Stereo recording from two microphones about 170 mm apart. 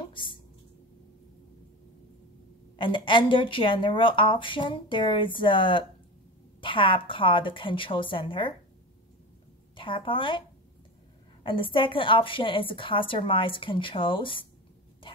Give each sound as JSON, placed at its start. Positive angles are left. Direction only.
{"t": 0.1, "sound": "a sound", "side_deg": 30}
{"t": 2.8, "sound": "a woman's voice", "side_deg": 30}
{"t": 9.8, "sound": "a woman's voice", "side_deg": 30}
{"t": 11.4, "sound": "a woman's voice", "side_deg": 30}